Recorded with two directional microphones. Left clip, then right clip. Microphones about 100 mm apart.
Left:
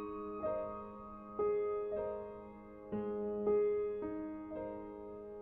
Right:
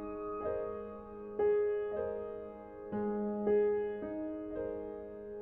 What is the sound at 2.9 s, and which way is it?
Music, 35° right (ahead or behind).